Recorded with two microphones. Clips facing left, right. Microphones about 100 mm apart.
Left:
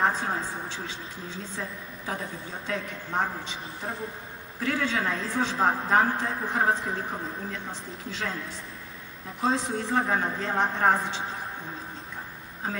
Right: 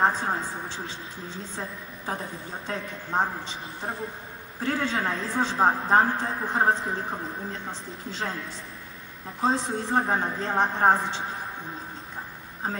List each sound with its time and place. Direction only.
0.0 s a woman's voice: 30° right (ahead or behind)
9.4 s a woman's voice: 30° right (ahead or behind)